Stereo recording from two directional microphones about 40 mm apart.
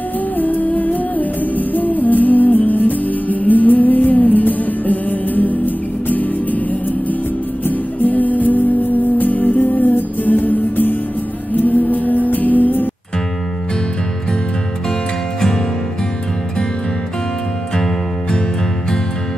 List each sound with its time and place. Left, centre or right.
0.4 s music: left